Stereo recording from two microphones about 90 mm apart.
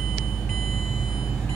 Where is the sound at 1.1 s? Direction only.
10° right (ahead or behind).